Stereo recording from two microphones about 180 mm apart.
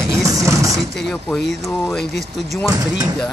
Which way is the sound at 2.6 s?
20° right (ahead or behind).